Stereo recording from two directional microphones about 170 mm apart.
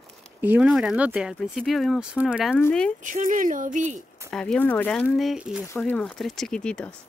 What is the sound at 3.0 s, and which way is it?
Speech, 50° right (ahead or behind).